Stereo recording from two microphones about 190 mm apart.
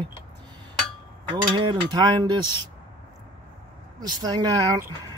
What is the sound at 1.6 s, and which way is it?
Speech, 25° right (ahead or behind).